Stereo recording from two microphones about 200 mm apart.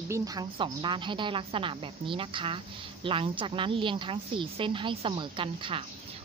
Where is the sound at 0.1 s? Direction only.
20° right (ahead or behind).